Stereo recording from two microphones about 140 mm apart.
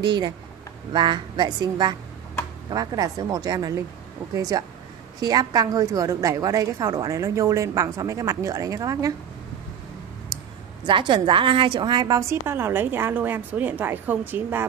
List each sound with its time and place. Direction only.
0.0 s a woman's voice: 30° right (ahead or behind)
10.3 s a sound: 25° right (ahead or behind)
10.9 s a woman's voice: 35° right (ahead or behind); by 14.7 s 15° right (ahead or behind)